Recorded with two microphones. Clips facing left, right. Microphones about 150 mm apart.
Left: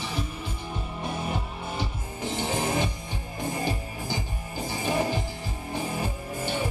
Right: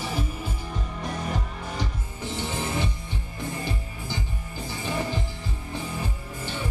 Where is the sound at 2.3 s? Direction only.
45° left (ahead or behind).